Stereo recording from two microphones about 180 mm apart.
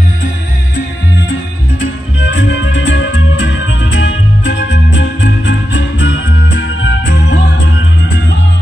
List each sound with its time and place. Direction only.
1.8 s music: 90° left